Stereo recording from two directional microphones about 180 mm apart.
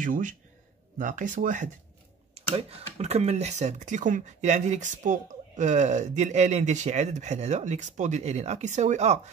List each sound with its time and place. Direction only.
0.0 s speech: 45° right (ahead or behind)